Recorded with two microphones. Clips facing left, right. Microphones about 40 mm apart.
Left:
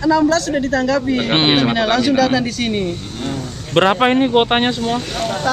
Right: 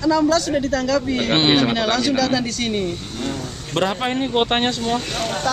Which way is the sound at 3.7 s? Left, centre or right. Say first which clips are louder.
Left 8 dB; left.